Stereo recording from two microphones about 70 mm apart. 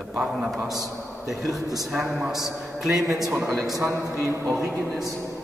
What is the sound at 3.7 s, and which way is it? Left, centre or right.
Speech, right.